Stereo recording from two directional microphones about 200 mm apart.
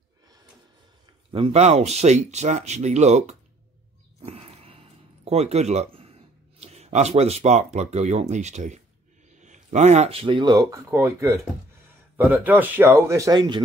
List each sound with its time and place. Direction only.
1.3 s speech: 30° right (ahead or behind)
4.2 s a sound: 30° right (ahead or behind)
6.6 s speech: 30° right (ahead or behind)